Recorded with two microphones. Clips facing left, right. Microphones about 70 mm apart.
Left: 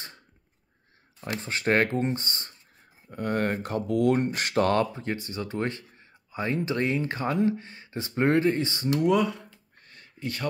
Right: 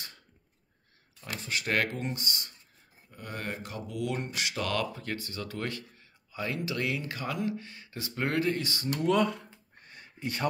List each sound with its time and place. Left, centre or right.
1.4 s speech: left
3.1 s speech: left
9.1 s speech: centre
9.5 s a sound: centre